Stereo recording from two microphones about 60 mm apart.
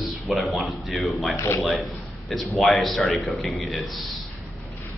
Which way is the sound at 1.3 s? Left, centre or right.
Left.